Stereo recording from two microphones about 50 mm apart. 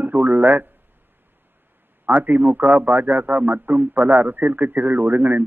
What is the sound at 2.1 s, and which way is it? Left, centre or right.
Speech, right.